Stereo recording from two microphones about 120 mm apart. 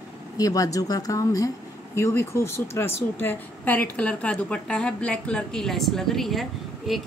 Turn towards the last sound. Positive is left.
turn(degrees=0)  # may be behind; listen again after turning